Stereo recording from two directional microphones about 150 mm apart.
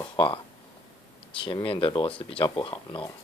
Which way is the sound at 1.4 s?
35° left (ahead or behind).